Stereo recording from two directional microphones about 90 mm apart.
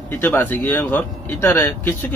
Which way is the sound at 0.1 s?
25° left (ahead or behind).